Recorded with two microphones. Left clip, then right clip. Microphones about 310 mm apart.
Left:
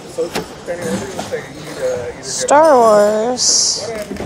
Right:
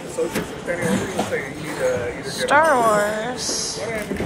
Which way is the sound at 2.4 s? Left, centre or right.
Centre.